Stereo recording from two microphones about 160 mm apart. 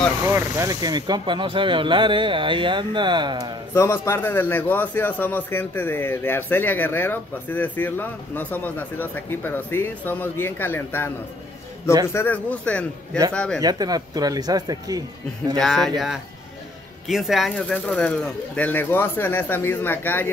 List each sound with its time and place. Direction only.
0.2 s speech: 15° right (ahead or behind)
3.7 s a man's voice: 15° left (ahead or behind)
12.1 s a man's voice: 15° left (ahead or behind)
13.6 s speech: 25° right (ahead or behind)
15.5 s speech: 5° left (ahead or behind)
17.1 s a man's voice: centre (ahead or behind)